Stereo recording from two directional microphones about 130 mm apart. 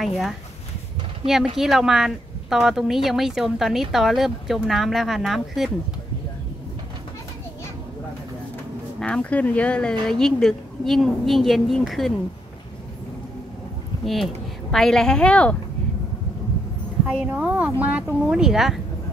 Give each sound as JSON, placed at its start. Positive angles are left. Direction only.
{"t": 0.0, "sound": "speech", "side_deg": 0}
{"t": 1.6, "sound": "speech", "side_deg": -5}
{"t": 9.0, "sound": "speech", "side_deg": 10}
{"t": 14.0, "sound": "speech", "side_deg": 0}
{"t": 17.1, "sound": "a woman's voice", "side_deg": -10}